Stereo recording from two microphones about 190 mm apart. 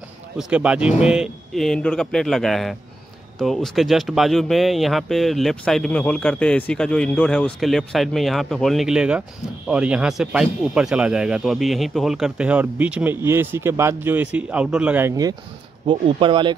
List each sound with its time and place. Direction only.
0.4 s speech: 5° right (ahead or behind); by 16.5 s 25° right (ahead or behind)